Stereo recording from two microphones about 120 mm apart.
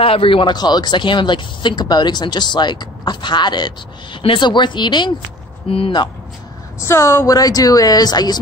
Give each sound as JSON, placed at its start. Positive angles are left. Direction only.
{"t": 0.0, "sound": "speech", "side_deg": 50}
{"t": 5.7, "sound": "speech", "side_deg": 50}
{"t": 6.8, "sound": "speech", "side_deg": 25}